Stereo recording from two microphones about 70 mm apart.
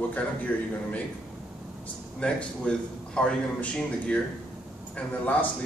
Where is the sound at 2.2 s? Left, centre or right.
Centre.